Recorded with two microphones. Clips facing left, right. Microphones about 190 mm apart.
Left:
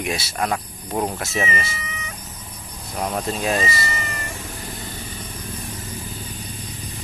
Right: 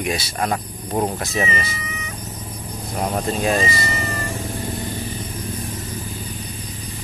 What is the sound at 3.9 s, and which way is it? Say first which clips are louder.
Cat: right 5 dB; 35° right (ahead or behind).